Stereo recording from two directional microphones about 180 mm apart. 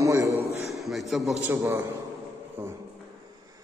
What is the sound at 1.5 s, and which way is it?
A man's voice, 15° right (ahead or behind).